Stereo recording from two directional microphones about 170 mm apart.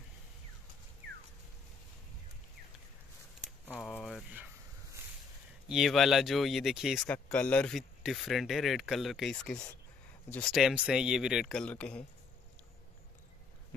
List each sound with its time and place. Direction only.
3.7 s a sound: centre (ahead or behind)
5.7 s speech: centre (ahead or behind)
7.1 s speech: 10° left (ahead or behind)